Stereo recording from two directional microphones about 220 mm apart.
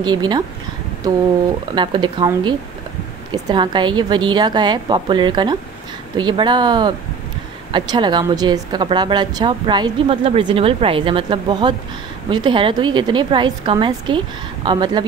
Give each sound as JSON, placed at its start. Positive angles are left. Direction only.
{"t": 0.0, "sound": "speech", "side_deg": -20}